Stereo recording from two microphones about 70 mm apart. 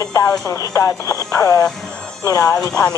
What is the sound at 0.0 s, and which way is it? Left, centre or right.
Speech, left.